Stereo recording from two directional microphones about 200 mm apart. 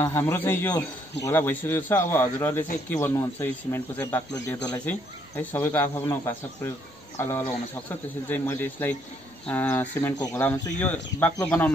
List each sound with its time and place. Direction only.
0.0 s speech: 15° left (ahead or behind)